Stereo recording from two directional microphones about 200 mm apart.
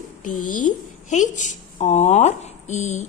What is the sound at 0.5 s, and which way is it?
A woman's voice, 40° left (ahead or behind).